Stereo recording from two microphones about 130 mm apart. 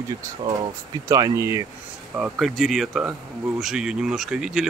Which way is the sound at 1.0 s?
25° right (ahead or behind).